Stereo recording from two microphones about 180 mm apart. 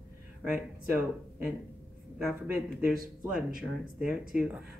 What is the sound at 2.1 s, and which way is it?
Speech, 5° right (ahead or behind).